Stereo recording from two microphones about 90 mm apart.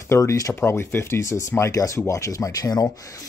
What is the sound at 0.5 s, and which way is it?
Speech, 30° left (ahead or behind).